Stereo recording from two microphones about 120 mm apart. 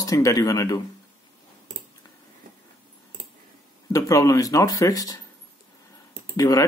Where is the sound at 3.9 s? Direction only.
25° left (ahead or behind).